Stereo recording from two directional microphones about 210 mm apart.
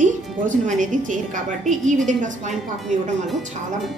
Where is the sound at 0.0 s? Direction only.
35° right (ahead or behind).